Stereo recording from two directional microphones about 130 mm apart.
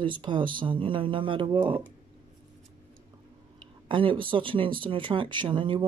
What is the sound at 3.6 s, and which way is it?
Speech, 40° right (ahead or behind).